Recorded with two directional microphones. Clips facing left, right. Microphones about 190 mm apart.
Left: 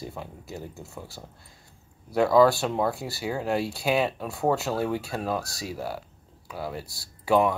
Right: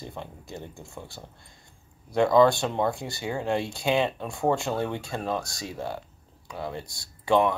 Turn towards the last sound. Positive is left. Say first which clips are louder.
# even
turn(degrees=5)  # may be behind; listen again after turning